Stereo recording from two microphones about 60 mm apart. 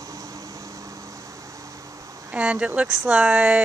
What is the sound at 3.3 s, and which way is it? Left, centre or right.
Speech, right.